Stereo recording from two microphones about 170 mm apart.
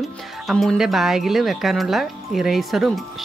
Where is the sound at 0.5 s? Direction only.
Centre (ahead or behind).